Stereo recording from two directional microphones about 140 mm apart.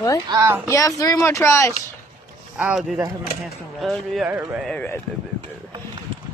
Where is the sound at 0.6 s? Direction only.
25° left (ahead or behind).